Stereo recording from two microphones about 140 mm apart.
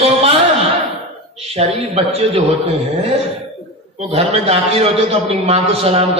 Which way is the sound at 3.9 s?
45° right (ahead or behind).